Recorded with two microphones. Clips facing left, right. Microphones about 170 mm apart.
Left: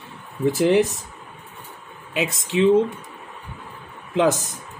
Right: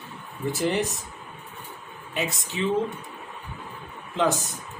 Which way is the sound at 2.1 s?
90° left.